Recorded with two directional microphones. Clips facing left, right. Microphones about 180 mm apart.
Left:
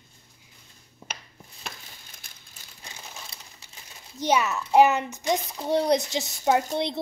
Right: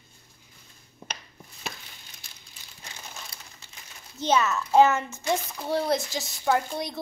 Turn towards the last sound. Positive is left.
turn(degrees=25)  # may be behind; listen again after turning